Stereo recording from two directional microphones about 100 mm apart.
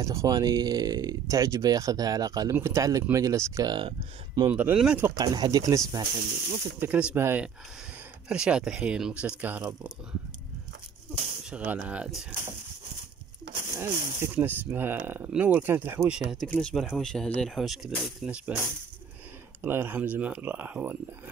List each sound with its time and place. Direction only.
0.0 s speech: 35° right (ahead or behind)
2.5 s speech: 30° right (ahead or behind)
3.6 s speech: 50° right (ahead or behind)
4.5 s speech: 20° right (ahead or behind)
5.1 s speech: 45° right (ahead or behind)
6.8 s speech: 15° right (ahead or behind)
7.2 s speech: 25° right (ahead or behind)
8.3 s speech: 10° right (ahead or behind)
11.5 s speech: 15° right (ahead or behind)
13.6 s speech: 25° right (ahead or behind)
16.1 s speech: 10° right (ahead or behind)
16.8 s speech: 5° left (ahead or behind); by 18.6 s 10° right (ahead or behind)
19.6 s speech: 20° right (ahead or behind)